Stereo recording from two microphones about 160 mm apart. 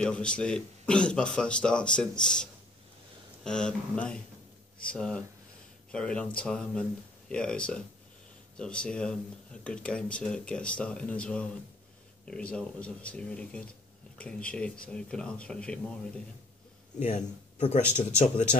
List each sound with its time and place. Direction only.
0.0 s speech: 5° left (ahead or behind)
17.0 s speech: 40° left (ahead or behind)